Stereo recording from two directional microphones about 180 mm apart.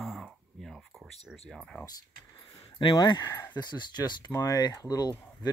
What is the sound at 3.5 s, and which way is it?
Speech, 25° left (ahead or behind).